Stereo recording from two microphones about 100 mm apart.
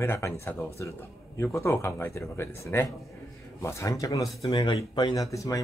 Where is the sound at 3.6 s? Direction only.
30° left (ahead or behind).